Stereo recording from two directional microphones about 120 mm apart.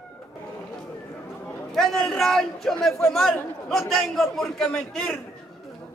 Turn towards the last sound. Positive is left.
turn(degrees=5)  # may be behind; listen again after turning